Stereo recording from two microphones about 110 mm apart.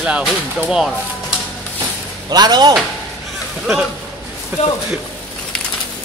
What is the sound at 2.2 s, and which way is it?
Speech, 40° right (ahead or behind).